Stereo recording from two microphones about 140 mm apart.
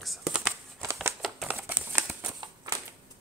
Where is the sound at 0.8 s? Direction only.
20° right (ahead or behind).